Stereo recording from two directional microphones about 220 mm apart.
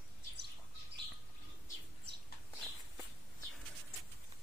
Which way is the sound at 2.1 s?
50° right (ahead or behind).